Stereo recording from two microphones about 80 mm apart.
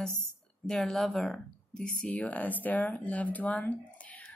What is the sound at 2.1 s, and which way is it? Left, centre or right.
Speech, centre.